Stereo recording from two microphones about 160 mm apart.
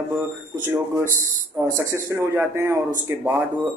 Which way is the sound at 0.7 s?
15° right (ahead or behind).